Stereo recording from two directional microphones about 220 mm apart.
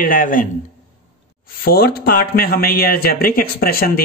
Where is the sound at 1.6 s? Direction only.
45° left (ahead or behind).